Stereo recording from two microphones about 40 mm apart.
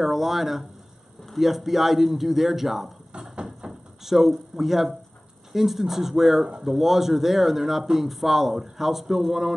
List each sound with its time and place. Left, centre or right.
0.0 s speech: centre
3.6 s door: centre
4.0 s speech: centre